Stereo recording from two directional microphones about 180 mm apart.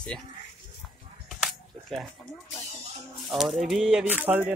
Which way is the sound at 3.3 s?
Centre (ahead or behind).